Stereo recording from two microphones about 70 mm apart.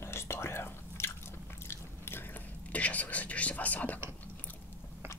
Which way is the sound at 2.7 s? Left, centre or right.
Left.